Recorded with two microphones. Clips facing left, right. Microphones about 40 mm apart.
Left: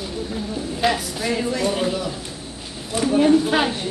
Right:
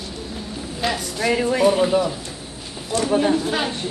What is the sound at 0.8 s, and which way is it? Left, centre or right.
Speech, centre.